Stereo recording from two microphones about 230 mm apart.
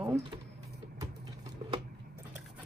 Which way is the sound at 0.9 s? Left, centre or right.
Centre.